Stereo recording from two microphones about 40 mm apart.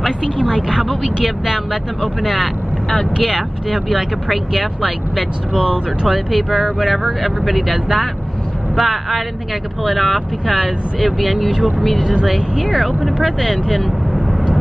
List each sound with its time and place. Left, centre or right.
0.4 s speech: centre
12.0 s speech: centre
12.3 s speech: centre